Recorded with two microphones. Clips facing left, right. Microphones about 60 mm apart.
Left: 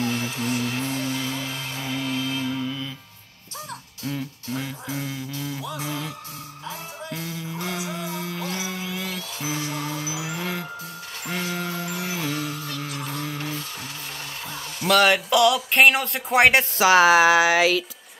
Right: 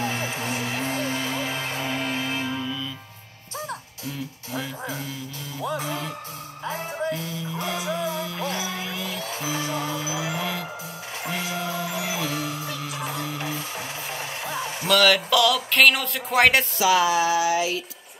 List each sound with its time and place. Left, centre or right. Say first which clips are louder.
0.0 s music: left 1 dB; right
5.6 s music: right 2 dB; right
7.5 s music: right 4 dB; right
11.2 s music: even; centre
14.5 s music: right 4 dB; centre
14.9 s speech: left 1 dB; left
15.1 s a sound: left 2 dB; centre
15.7 s speech: even; left
16.7 s speech: left 3 dB; left
17.0 s a sound: left 5 dB; left